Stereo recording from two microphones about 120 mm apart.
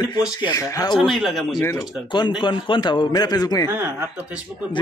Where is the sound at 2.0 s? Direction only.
40° left (ahead or behind).